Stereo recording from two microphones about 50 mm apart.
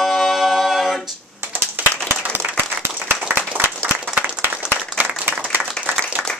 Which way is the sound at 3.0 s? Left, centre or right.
Right.